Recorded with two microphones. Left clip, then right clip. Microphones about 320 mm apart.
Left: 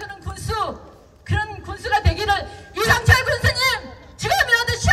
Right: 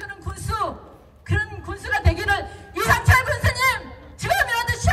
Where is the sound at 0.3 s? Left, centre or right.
Centre.